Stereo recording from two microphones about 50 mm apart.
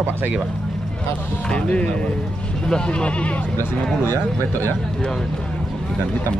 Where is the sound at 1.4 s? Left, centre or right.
Left.